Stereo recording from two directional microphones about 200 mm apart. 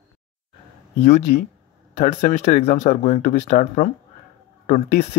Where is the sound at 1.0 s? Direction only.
35° left (ahead or behind).